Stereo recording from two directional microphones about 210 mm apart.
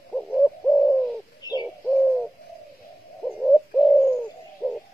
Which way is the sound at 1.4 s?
20° left (ahead or behind).